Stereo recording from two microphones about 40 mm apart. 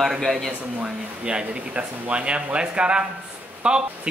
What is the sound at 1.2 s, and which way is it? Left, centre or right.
Speech, right.